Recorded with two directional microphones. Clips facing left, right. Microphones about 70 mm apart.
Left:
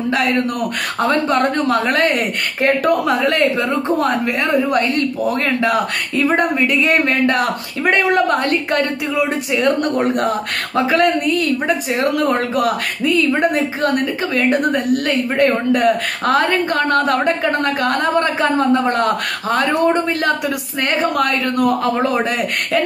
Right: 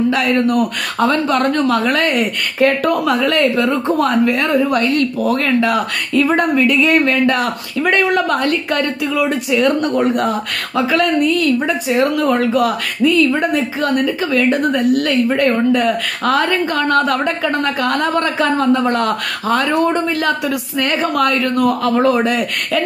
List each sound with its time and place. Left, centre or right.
1.0 s speech: left